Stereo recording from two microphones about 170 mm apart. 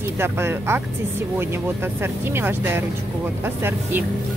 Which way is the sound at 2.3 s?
15° right (ahead or behind).